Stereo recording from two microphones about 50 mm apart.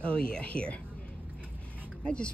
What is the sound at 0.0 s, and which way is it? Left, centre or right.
Speech, centre.